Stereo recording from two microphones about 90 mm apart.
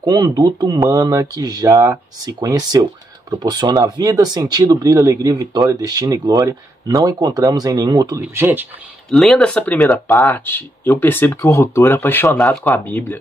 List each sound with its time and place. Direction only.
0.0 s speech: 50° right (ahead or behind)
8.4 s speech: 25° right (ahead or behind)
9.1 s speech: 5° left (ahead or behind)
10.1 s speech: 20° left (ahead or behind)